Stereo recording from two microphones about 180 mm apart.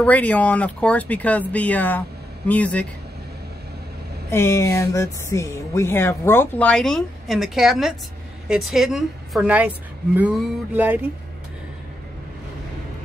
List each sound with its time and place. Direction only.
0.0 s speech: 10° left (ahead or behind)
4.3 s a woman's voice: 15° left (ahead or behind); by 9.7 s 5° right (ahead or behind)
10.1 s a sound: 5° right (ahead or behind)